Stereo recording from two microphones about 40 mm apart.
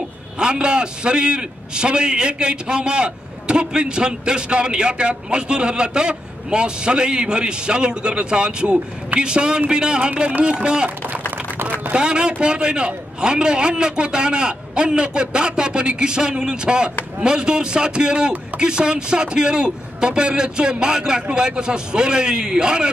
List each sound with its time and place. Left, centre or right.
0.4 s a man's voice: right
11.9 s a man's voice: right